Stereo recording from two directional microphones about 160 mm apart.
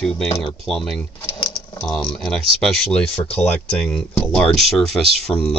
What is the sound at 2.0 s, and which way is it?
Speech, 30° left (ahead or behind).